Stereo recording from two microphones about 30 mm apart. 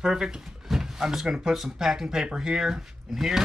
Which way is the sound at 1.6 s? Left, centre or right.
Centre.